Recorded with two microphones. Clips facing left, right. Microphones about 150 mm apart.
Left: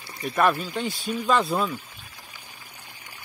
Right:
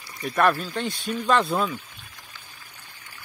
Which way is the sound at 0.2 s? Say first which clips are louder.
Right 1 dB; centre (ahead or behind).